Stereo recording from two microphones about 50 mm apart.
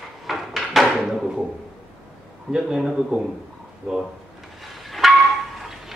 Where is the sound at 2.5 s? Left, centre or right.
Centre.